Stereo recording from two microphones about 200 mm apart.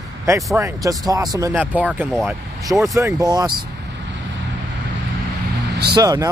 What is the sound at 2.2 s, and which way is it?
Speech, 15° right (ahead or behind).